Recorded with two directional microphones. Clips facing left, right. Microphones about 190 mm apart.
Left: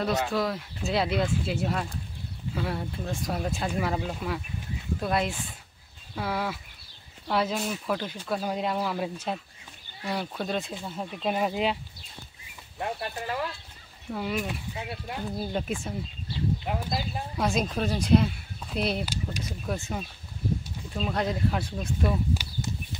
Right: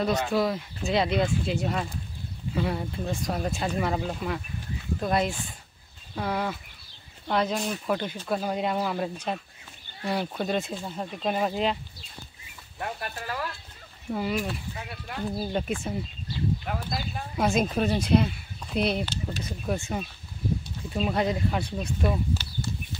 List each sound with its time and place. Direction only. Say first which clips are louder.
0.0 s speech: right 2 dB; centre (ahead or behind)
12.7 s speech: left 2 dB; 20° left (ahead or behind)
14.1 s speech: right 2 dB; centre (ahead or behind)
14.5 s speech: left 1 dB; 20° left (ahead or behind)
15.3 s speech: right 2 dB; centre (ahead or behind)
16.6 s speech: left 1 dB; 20° left (ahead or behind)
17.4 s speech: right 3 dB; 5° right (ahead or behind)
22.3 s a sound: even; 10° left (ahead or behind)